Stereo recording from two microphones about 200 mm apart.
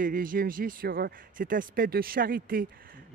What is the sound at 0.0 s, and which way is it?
Speech, 45° right (ahead or behind).